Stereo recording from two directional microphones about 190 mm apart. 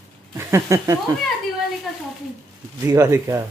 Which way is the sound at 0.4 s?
15° right (ahead or behind).